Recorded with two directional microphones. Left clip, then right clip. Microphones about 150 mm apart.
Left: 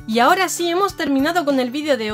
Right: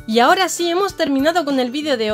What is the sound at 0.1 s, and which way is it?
Speech, 20° right (ahead or behind).